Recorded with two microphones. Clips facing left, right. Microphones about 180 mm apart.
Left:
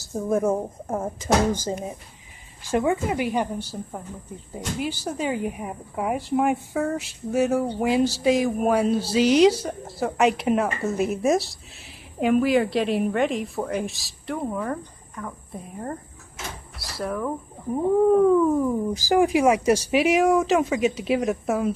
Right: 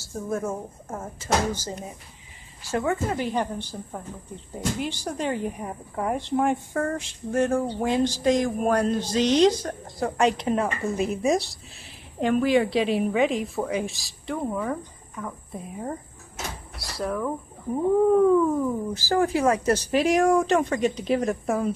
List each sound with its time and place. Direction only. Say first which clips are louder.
0.0 s speech: left 6 dB; 20° left (ahead or behind)
2.7 s speech: left 3 dB; 15° left (ahead or behind)